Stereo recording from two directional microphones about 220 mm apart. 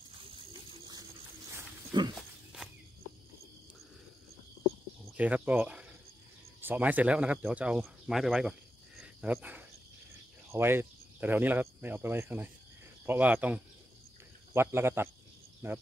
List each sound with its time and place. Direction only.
0.3 s a sound: 20° right (ahead or behind)
2.1 s walk: centre (ahead or behind)
5.1 s speech: 5° right (ahead or behind)